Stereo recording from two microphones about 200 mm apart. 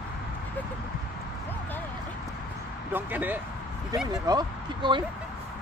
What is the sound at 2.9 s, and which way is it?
Speech, 10° right (ahead or behind).